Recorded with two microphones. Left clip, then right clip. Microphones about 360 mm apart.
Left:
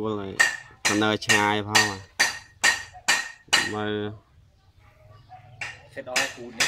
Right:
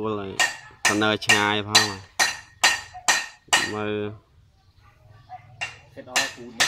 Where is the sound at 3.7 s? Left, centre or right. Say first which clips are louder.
Right 1 dB; centre.